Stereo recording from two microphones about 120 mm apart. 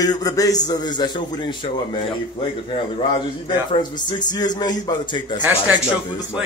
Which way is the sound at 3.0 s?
50° left (ahead or behind).